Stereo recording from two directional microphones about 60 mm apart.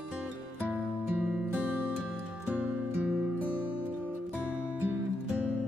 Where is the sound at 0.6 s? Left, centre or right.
Right.